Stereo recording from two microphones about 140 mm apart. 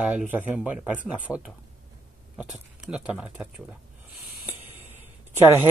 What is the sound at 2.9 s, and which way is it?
Speech, 10° right (ahead or behind).